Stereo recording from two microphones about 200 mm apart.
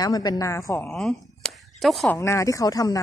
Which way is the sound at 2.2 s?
15° left (ahead or behind).